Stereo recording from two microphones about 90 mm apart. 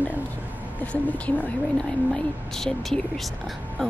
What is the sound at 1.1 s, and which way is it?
Speech, 15° left (ahead or behind).